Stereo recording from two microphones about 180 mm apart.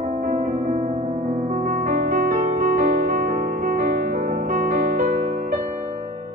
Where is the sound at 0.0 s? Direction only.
40° right (ahead or behind).